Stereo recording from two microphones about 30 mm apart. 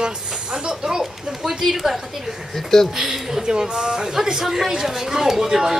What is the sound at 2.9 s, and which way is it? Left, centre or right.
Speech, centre.